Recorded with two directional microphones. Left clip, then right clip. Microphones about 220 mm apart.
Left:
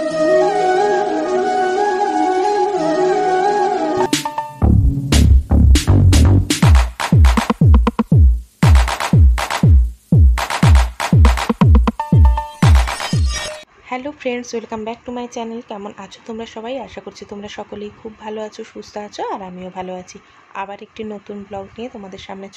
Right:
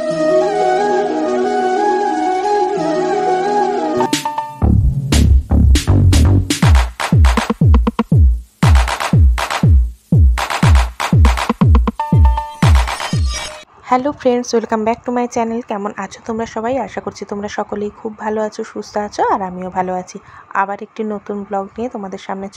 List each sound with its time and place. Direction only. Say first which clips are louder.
0.0 s music: even; centre (ahead or behind)
13.8 s speech: right 9 dB; 25° right (ahead or behind)